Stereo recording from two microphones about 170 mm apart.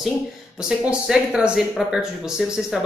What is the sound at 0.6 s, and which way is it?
Speech, 5° right (ahead or behind).